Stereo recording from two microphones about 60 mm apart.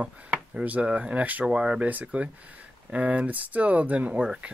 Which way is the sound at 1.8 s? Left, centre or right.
Right.